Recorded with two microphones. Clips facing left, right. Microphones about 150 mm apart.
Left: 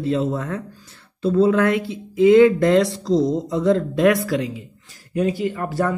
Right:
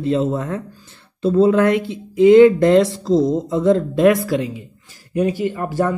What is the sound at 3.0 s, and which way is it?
Speech, 50° right (ahead or behind).